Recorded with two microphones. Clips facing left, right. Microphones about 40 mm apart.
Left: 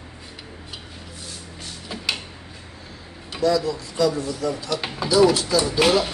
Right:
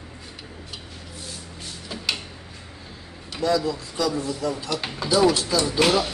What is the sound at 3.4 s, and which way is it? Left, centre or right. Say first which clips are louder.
Speech: left 2 dB; centre.